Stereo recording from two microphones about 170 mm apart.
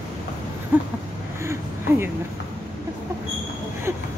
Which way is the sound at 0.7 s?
10° right (ahead or behind).